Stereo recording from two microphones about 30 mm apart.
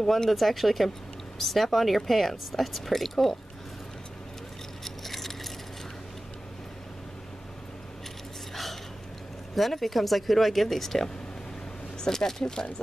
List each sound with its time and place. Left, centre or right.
0.0 s speech: centre
0.3 s speech: centre
4.8 s a sound: centre
9.6 s speech: centre